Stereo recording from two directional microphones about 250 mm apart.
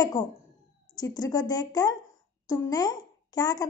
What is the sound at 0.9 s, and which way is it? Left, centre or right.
A woman's voice, centre.